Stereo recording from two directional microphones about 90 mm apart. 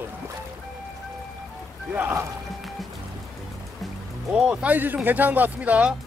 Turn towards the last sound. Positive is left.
turn(degrees=-15)  # may be behind; listen again after turning